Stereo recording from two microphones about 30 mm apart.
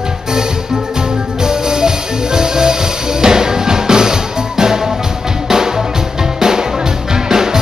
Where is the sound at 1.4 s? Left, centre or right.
Right.